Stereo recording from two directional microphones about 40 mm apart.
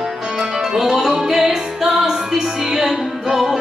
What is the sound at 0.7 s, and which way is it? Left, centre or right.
Music, centre.